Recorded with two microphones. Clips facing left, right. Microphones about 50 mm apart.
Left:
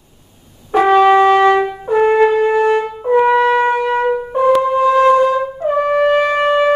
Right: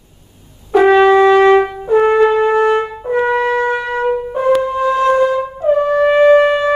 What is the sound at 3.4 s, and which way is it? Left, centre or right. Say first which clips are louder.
Wind instrument: left 2 dB; left.